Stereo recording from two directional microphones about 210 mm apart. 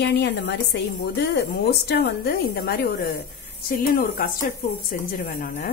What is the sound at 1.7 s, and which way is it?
A woman's voice, 50° left (ahead or behind).